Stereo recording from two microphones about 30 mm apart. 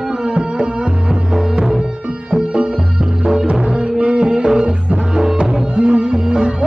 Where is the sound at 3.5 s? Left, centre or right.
Right.